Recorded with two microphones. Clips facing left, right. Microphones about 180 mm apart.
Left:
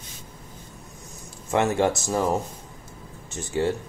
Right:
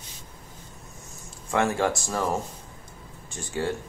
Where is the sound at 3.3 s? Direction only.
25° left (ahead or behind).